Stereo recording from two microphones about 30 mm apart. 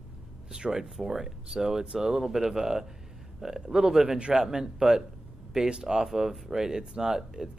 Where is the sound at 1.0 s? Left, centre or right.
Centre.